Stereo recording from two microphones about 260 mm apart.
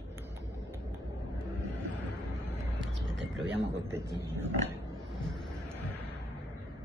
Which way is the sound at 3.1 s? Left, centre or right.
Right.